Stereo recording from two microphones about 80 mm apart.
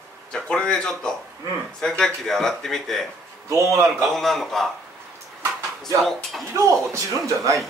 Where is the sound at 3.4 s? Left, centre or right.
Right.